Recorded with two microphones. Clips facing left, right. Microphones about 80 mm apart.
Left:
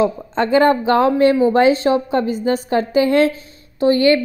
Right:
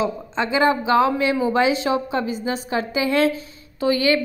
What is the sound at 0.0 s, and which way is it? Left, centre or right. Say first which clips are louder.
A woman's voice: left 6 dB; left.